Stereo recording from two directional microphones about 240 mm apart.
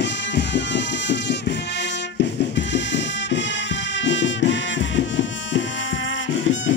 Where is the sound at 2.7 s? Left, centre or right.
Left.